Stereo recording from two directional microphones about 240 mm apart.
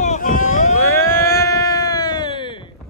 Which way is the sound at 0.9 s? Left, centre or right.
Centre.